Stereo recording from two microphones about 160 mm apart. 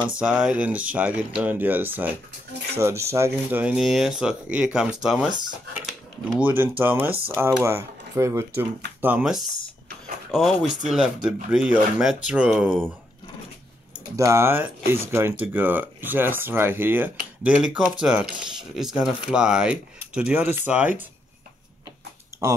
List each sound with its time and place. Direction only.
0.2 s speech: 5° right (ahead or behind)
5.9 s a sound: 10° right (ahead or behind)
6.8 s speech: 10° right (ahead or behind)
14.1 s speech: 20° right (ahead or behind)